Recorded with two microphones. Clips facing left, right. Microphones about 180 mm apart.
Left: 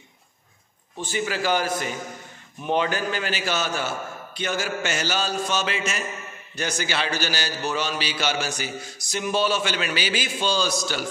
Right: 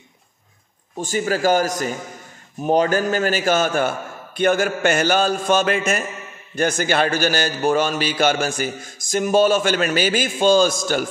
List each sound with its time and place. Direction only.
0.9 s a man's voice: 45° right (ahead or behind)